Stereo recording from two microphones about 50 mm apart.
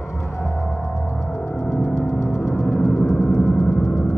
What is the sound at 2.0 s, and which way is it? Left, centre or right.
Music, left.